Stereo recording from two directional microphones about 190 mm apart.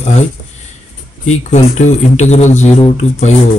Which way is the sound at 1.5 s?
40° left (ahead or behind).